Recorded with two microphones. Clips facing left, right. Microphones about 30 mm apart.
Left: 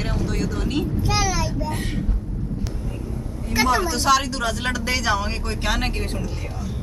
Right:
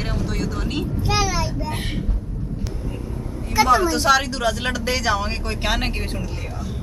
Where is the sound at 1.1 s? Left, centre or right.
Centre.